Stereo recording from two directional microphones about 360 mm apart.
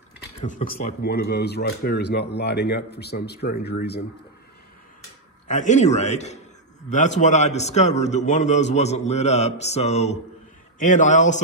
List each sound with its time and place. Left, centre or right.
0.4 s speech: left
5.5 s speech: centre